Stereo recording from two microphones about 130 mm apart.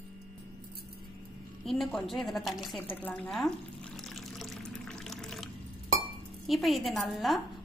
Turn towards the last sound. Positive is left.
turn(degrees=0)  # may be behind; listen again after turning